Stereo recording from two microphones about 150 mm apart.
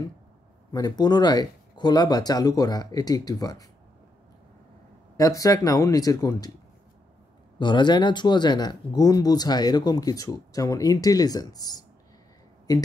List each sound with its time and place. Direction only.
0.7 s speech: 25° left (ahead or behind)
5.1 s speech: 25° left (ahead or behind)
7.5 s speech: 30° left (ahead or behind)